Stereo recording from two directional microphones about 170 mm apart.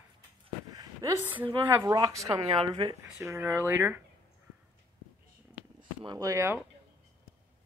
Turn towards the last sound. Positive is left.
turn(degrees=-15)  # may be behind; listen again after turning